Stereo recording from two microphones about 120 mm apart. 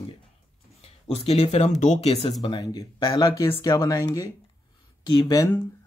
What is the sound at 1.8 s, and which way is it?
Speech, 85° left.